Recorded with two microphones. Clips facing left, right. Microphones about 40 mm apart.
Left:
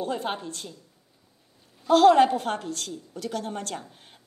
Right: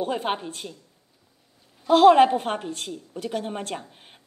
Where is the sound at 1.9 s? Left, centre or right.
Right.